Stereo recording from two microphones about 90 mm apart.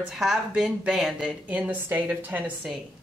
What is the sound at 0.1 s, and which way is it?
Speech, centre (ahead or behind).